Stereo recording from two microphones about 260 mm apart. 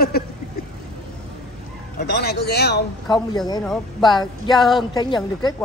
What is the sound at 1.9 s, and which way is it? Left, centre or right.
Speech, left.